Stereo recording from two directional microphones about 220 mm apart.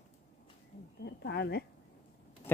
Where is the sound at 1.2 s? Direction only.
50° left (ahead or behind).